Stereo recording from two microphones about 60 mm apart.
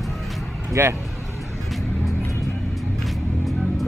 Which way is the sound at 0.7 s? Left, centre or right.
Right.